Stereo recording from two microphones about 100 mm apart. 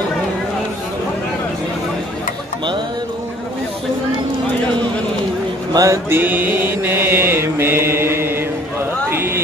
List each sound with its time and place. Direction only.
5.7 s speech: 35° right (ahead or behind)
6.0 s mantra: 20° right (ahead or behind)
9.1 s a sound: 25° right (ahead or behind)